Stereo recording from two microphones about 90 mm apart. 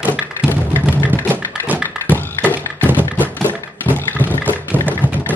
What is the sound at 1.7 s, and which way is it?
Music, 20° right (ahead or behind).